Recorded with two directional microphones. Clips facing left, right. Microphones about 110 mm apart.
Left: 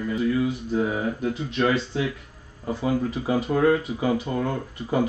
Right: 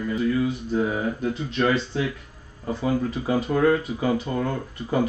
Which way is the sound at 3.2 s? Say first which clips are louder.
Even; 25° left (ahead or behind).